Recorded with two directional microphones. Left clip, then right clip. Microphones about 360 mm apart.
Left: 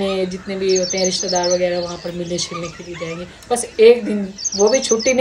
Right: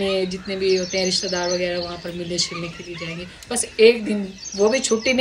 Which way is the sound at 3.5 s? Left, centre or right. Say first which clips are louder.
Left 4 dB; centre.